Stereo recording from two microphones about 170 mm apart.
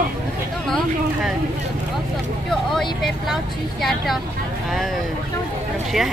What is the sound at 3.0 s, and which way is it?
Speech, centre (ahead or behind).